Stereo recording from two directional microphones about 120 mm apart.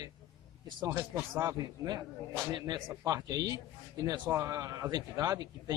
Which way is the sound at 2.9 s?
20° right (ahead or behind).